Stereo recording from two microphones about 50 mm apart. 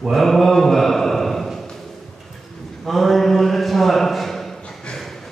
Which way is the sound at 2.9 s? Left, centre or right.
Centre.